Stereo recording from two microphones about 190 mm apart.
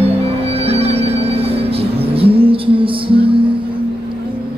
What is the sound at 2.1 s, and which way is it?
Music, 30° right (ahead or behind).